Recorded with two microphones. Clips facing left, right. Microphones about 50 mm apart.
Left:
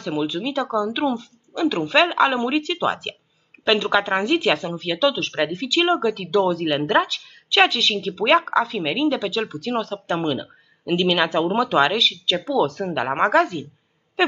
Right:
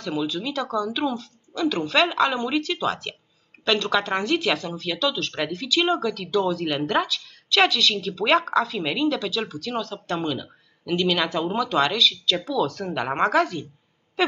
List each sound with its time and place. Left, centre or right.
0.0 s speech: centre
6.1 s speech: centre
11.4 s speech: centre
12.9 s speech: centre
13.3 s speech: centre